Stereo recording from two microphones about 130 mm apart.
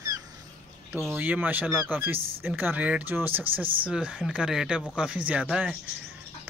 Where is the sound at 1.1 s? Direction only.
15° right (ahead or behind).